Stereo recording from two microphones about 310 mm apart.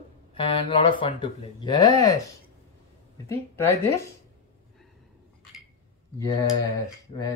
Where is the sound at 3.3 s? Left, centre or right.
Centre.